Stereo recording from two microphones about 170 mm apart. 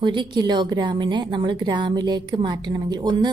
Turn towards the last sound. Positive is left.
turn(degrees=-25)  # may be behind; listen again after turning